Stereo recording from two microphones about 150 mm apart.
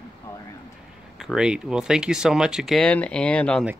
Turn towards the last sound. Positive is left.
turn(degrees=10)  # may be behind; listen again after turning